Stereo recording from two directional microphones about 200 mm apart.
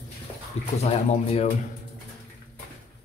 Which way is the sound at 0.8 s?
35° left (ahead or behind).